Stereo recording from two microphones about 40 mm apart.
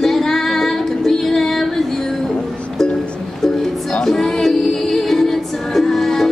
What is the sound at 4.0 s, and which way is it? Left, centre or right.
Music, centre.